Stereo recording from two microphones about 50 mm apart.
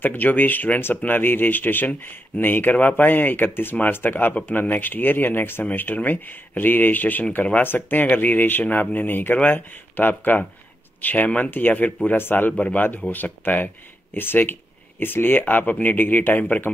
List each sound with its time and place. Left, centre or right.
0.0 s speech: left
11.5 s speech: left
12.5 s speech: left
13.1 s speech: left